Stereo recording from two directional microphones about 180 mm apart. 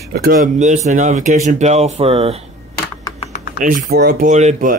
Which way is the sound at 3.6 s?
50° right (ahead or behind).